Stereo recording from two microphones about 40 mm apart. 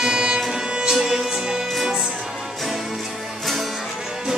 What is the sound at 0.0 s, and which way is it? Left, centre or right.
Music, centre.